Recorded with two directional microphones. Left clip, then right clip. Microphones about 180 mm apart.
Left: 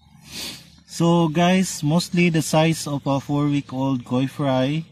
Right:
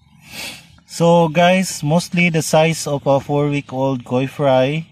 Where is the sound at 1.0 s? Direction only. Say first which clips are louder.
Right 7 dB; centre (ahead or behind).